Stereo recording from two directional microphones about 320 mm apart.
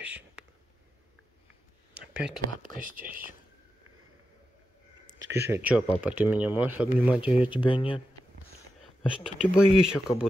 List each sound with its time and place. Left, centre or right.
0.0 s whispering: centre
2.0 s a sound: centre
2.6 s speech: right
5.3 s speech: centre
7.6 s speech: centre
9.4 s speech: centre